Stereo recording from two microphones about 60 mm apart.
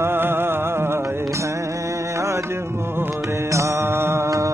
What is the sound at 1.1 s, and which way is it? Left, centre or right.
Mantra, right.